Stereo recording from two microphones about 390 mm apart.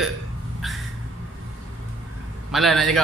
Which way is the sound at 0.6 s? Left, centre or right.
Centre.